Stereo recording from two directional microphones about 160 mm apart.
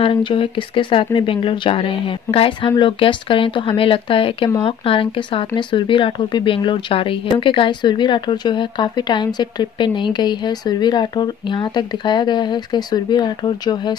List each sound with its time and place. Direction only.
0.0 s speech: 30° left (ahead or behind)